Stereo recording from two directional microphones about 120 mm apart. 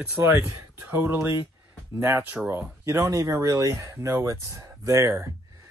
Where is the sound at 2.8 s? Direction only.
25° right (ahead or behind).